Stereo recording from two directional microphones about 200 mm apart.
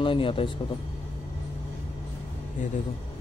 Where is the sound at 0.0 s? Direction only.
25° left (ahead or behind).